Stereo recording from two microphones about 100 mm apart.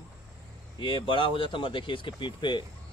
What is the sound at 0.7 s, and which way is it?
Speech, 55° left (ahead or behind).